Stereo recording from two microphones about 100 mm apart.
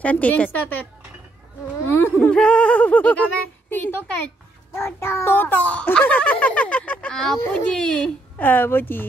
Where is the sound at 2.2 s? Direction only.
10° left (ahead or behind).